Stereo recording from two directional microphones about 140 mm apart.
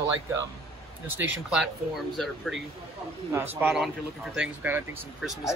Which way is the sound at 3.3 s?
15° right (ahead or behind).